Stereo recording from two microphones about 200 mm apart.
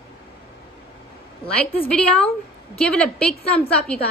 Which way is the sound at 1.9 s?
5° left (ahead or behind).